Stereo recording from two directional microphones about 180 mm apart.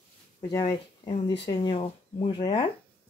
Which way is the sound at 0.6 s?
25° left (ahead or behind).